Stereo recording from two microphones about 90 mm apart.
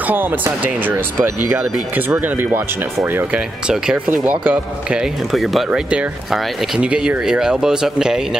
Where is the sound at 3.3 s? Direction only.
10° right (ahead or behind).